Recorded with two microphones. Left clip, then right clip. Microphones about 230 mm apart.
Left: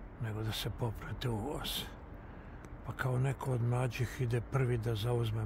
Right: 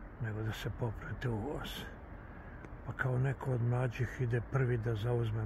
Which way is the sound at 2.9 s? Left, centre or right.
Centre.